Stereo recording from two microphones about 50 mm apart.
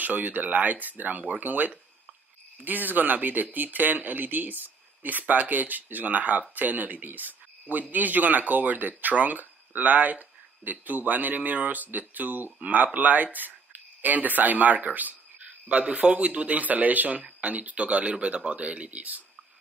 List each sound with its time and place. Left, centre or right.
0.0 s speech: right